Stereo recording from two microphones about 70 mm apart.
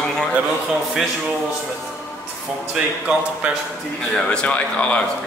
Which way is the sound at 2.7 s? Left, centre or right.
Centre.